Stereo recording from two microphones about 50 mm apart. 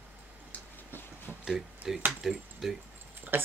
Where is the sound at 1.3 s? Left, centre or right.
Right.